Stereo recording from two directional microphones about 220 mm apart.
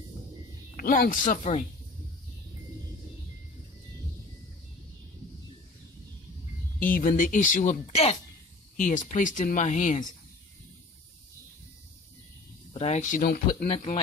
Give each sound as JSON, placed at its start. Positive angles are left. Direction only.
{"t": 0.7, "sound": "speech", "side_deg": 40}
{"t": 6.8, "sound": "speech", "side_deg": 40}
{"t": 12.7, "sound": "speech", "side_deg": 30}